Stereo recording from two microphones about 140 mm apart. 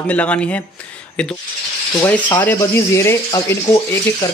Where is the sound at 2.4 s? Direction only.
15° left (ahead or behind).